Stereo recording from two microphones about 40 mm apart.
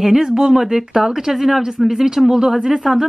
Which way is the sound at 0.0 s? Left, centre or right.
Centre.